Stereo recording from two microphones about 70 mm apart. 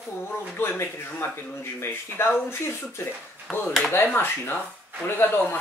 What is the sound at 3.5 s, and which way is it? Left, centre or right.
Speech, left.